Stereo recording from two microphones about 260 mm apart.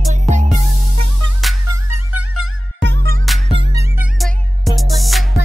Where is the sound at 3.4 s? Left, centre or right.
Centre.